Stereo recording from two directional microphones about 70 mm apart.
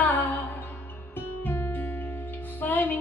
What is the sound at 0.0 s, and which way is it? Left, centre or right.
Music, left.